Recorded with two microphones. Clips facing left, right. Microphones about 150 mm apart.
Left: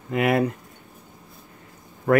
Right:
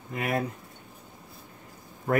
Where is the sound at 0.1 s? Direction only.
85° left.